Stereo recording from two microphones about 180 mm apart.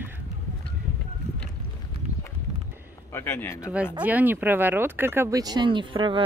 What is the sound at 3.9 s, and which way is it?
Speech, 10° right (ahead or behind).